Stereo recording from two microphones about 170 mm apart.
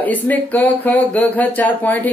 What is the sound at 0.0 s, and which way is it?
Speech, 10° left (ahead or behind).